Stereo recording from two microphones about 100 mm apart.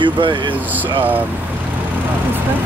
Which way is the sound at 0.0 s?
55° right (ahead or behind).